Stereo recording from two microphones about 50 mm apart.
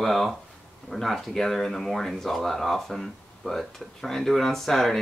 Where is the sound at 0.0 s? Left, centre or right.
Centre.